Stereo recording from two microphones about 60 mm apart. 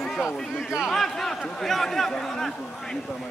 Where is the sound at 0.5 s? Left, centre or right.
Centre.